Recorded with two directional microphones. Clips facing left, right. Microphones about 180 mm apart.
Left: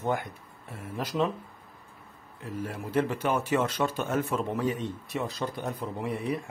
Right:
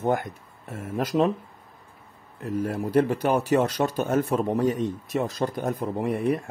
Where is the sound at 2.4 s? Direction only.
45° right (ahead or behind).